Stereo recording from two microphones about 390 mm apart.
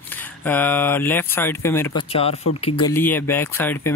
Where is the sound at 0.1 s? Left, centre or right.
Centre.